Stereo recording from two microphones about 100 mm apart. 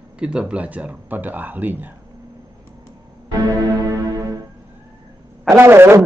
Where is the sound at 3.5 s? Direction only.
35° right (ahead or behind).